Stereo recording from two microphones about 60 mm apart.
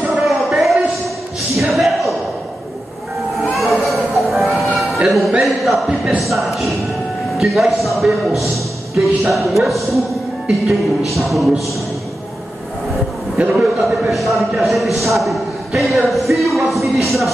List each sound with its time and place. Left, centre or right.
0.1 s a sound: centre
3.3 s music: centre
5.4 s a sound: centre
6.0 s a man's voice: centre
11.1 s a man's voice: centre
13.4 s a man's voice: right
13.8 s a man's voice: centre